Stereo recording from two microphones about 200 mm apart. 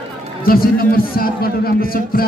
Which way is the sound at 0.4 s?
45° left (ahead or behind).